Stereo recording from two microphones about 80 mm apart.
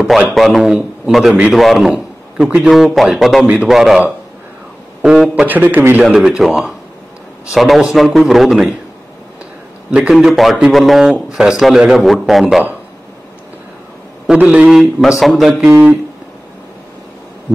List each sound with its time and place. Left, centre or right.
0.3 s a man's voice: centre
2.3 s speech: centre
2.7 s a man's voice: centre
5.0 s a man's voice: centre
5.5 s a man's voice: right
6.1 s a man's voice: centre
9.8 s a man's voice: centre
10.1 s a man's voice: centre
14.4 s speech: centre
14.8 s a man's voice: centre
15.7 s a man's voice: centre